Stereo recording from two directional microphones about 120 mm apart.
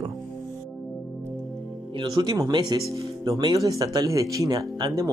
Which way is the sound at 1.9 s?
35° right (ahead or behind).